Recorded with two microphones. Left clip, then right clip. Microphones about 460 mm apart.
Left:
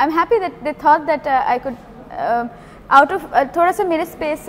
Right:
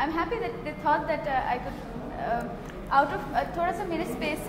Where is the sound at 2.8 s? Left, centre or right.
Left.